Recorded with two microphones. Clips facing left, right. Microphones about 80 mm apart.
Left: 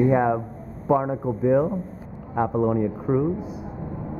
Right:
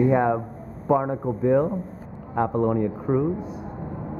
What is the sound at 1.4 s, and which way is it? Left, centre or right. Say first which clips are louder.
Speech: even; centre.